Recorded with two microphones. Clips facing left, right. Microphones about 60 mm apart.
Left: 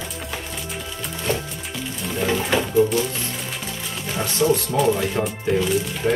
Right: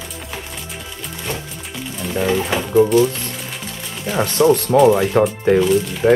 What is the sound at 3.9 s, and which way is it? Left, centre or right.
Music, centre.